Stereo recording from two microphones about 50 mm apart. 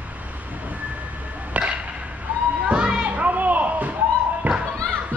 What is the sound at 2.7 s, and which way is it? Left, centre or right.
Children playing, right.